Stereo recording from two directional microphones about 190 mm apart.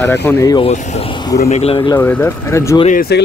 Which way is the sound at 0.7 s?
35° left (ahead or behind).